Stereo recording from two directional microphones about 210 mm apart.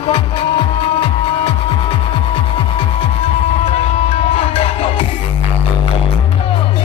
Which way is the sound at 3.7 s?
30° left (ahead or behind).